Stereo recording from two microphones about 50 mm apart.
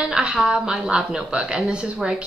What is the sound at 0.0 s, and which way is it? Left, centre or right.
A woman's voice, centre.